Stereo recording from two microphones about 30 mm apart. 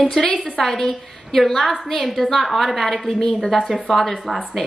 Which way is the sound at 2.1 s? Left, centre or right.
Centre.